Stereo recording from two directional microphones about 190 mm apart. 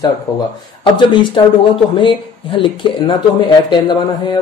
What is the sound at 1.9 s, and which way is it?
Speech, 25° left (ahead or behind).